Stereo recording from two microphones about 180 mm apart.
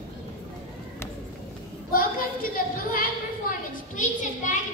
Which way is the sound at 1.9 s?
55° left (ahead or behind).